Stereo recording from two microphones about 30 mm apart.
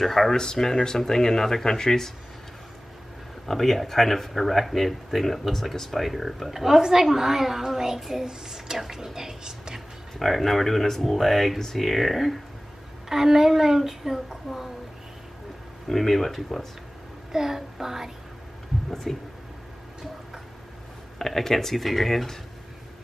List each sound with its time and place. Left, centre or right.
0.0 s speech: centre
3.4 s speech: centre
6.5 s speech: centre
8.3 s a sound: right
8.7 s speech: centre
10.1 s speech: centre
13.1 s speech: centre
15.9 s speech: centre
17.3 s speech: centre
19.1 s speech: centre
21.2 s speech: centre